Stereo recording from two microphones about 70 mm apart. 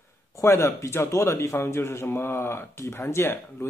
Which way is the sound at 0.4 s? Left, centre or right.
Left.